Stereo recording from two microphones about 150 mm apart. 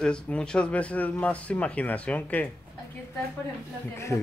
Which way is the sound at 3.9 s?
20° left (ahead or behind).